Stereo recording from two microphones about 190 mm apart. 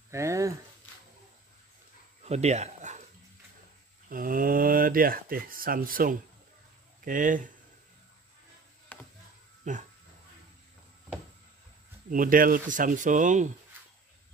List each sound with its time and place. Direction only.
0.1 s speech: 15° right (ahead or behind)
2.2 s a sound: 35° right (ahead or behind)
4.1 s speech: 45° right (ahead or behind)
8.9 s a sound: 10° left (ahead or behind)
9.6 s speech: 40° right (ahead or behind)
12.1 s speech: 45° right (ahead or behind)